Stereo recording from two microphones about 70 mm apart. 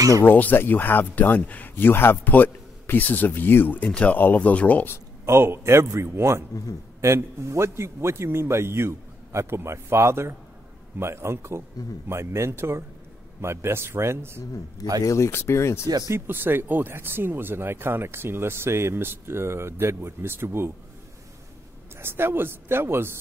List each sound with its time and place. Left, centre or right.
0.2 s speech: left
5.2 s speech: right
15.0 s speech: left
16.1 s speech: right
21.9 s speech: right